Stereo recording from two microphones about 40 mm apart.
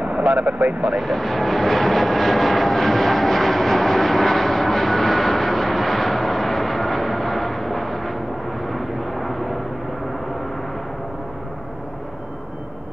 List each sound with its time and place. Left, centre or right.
0.0 s speech: right
0.9 s vehicle: centre